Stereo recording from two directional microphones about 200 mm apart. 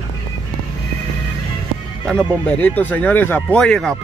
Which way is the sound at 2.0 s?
5° left (ahead or behind).